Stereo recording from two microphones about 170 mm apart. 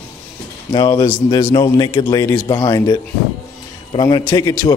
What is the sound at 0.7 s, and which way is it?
Speech, 25° left (ahead or behind).